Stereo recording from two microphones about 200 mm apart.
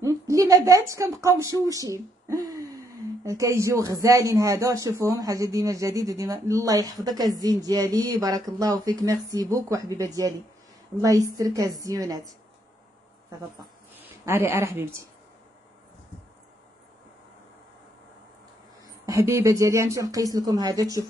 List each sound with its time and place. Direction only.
0.0 s a woman's voice: 15° right (ahead or behind)
13.9 s speech: 10° right (ahead or behind)
19.0 s speech: 15° right (ahead or behind)